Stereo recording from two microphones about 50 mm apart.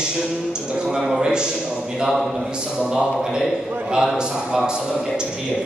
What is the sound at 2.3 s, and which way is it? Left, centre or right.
Speech, centre.